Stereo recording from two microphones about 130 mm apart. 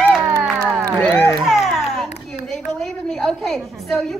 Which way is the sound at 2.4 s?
Centre (ahead or behind).